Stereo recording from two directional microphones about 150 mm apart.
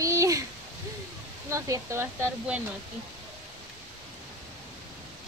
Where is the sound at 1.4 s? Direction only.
20° right (ahead or behind).